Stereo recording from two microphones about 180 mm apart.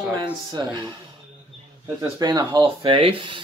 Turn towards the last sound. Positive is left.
turn(degrees=-30)  # may be behind; listen again after turning